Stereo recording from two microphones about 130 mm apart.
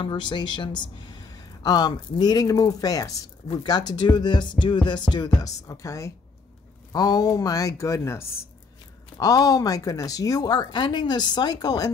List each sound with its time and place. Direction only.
0.0 s speech: 35° left (ahead or behind)